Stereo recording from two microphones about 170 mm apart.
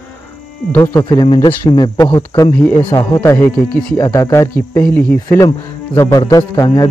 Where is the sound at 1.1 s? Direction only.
25° left (ahead or behind).